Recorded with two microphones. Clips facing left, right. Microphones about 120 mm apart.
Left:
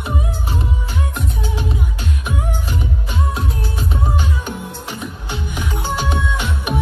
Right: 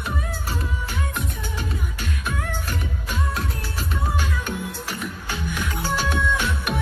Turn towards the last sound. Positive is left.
turn(degrees=10)  # may be behind; listen again after turning